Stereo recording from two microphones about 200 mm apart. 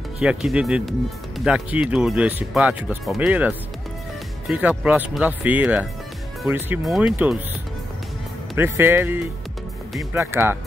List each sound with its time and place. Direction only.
0.2 s speech: 5° right (ahead or behind)
8.5 s speech: 10° right (ahead or behind)